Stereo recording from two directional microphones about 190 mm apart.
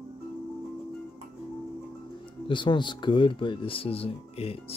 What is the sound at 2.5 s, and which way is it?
Speech, 25° left (ahead or behind).